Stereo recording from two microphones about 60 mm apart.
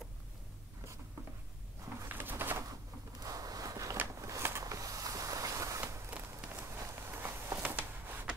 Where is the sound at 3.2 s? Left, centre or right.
Right.